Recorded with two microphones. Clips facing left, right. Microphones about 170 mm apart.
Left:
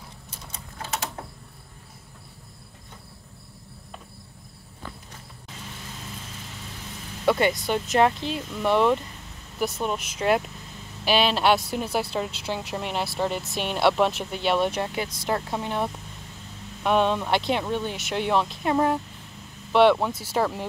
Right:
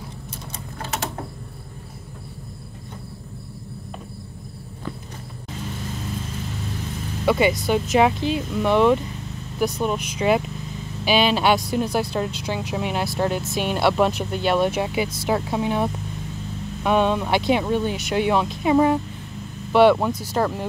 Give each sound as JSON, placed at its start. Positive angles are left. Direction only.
{"t": 0.5, "sound": "typing", "side_deg": -65}
{"t": 7.2, "sound": "speech", "side_deg": -5}